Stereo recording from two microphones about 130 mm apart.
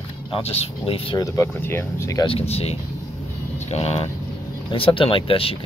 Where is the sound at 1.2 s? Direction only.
20° left (ahead or behind).